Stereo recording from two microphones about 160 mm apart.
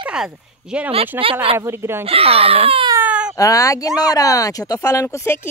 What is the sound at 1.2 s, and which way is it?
Speech, 35° right (ahead or behind).